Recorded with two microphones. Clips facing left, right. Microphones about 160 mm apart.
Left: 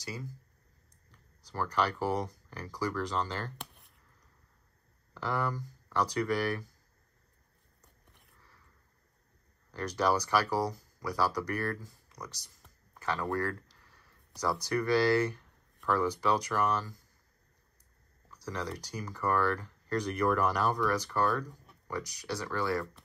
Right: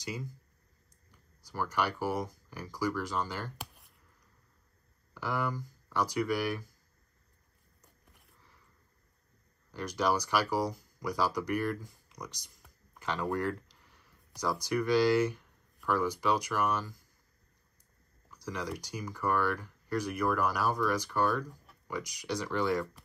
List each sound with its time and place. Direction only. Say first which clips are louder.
1.4 s speech: left 1 dB; 10° right (ahead or behind)
5.1 s speech: left 1 dB; 10° right (ahead or behind)
8.0 s a sound: even; 5° right (ahead or behind)
9.7 s speech: left 1 dB; 10° right (ahead or behind)
13.3 s a sound: right 1 dB; 15° right (ahead or behind)
14.7 s speech: right 1 dB; 10° right (ahead or behind)
18.3 s speech: even; 10° right (ahead or behind)